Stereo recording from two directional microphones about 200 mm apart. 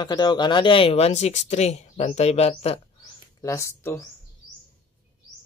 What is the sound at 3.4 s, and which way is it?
Speech, 15° left (ahead or behind).